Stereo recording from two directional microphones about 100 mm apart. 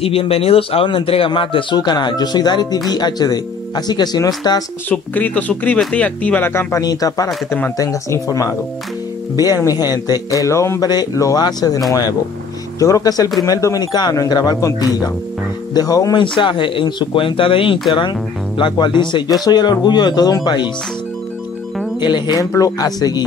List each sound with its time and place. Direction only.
0.0 s speech: 75° left (ahead or behind); by 1.8 s 55° left (ahead or behind)
1.8 s speech: 45° left (ahead or behind)
4.8 s speech: 15° left (ahead or behind)
6.8 s speech: 40° left (ahead or behind)
9.7 s speech: 40° left (ahead or behind)
16.2 s speech: 55° left (ahead or behind)
22.0 s speech: 45° left (ahead or behind)